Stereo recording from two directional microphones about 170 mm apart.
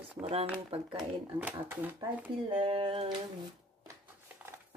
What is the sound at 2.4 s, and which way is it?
Speech, 30° right (ahead or behind).